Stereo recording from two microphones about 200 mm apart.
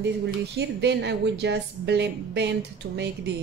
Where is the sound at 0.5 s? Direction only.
55° right (ahead or behind).